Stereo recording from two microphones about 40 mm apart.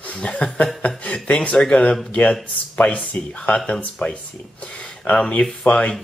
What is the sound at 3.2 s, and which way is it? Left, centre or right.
Speech, left.